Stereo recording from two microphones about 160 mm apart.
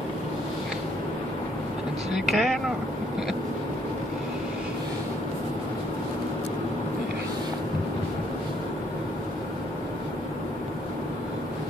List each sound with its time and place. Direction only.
2.1 s speech: centre (ahead or behind)